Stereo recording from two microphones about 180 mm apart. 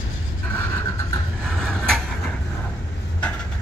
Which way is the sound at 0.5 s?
15° left (ahead or behind).